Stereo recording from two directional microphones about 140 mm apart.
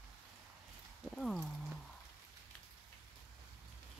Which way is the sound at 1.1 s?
Centre (ahead or behind).